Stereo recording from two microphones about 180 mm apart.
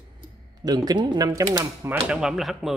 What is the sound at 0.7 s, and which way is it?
Speech, 20° right (ahead or behind).